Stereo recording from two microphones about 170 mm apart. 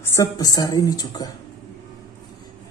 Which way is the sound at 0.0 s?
20° left (ahead or behind).